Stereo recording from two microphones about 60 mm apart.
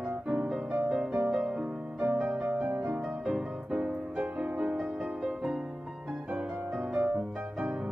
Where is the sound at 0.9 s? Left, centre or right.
Right.